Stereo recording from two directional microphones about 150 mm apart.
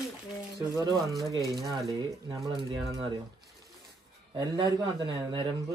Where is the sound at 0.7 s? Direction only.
25° right (ahead or behind).